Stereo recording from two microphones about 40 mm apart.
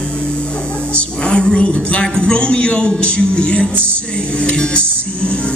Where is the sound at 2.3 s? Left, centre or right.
Left.